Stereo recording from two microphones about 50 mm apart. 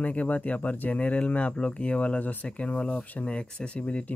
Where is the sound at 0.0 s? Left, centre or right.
Left.